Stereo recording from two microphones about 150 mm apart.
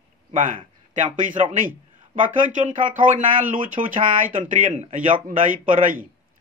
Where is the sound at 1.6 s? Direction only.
55° right (ahead or behind).